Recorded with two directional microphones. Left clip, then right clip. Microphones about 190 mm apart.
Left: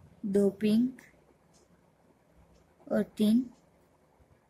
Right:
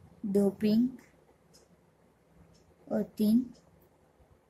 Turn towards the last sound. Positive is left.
turn(degrees=15)  # may be behind; listen again after turning